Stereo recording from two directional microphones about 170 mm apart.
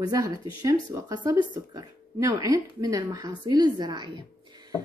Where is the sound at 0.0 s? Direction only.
20° right (ahead or behind).